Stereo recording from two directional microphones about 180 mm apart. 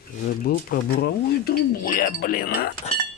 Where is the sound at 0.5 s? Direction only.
60° left (ahead or behind).